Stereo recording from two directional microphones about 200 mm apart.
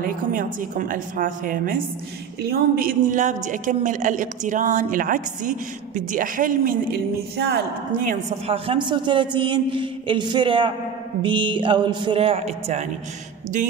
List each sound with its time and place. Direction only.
0.0 s a woman's voice: 45° right (ahead or behind)
8.5 s a man's voice: 25° right (ahead or behind)